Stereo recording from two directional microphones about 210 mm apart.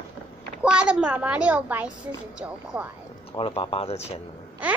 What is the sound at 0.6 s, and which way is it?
A child's voice, 5° right (ahead or behind).